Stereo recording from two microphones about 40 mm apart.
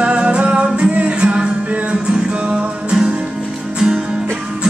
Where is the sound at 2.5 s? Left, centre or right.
Right.